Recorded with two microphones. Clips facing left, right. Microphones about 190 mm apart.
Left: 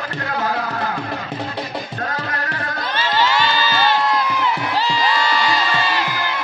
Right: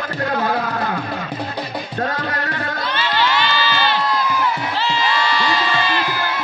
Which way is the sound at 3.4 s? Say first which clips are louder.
Left 1 dB; 45° left (ahead or behind).